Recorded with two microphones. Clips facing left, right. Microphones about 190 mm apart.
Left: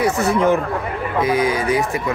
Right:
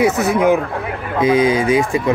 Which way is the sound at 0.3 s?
15° right (ahead or behind).